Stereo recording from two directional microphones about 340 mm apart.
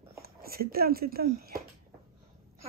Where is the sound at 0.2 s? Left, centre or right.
Right.